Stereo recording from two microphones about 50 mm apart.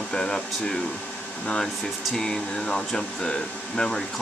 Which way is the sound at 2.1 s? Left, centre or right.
Centre.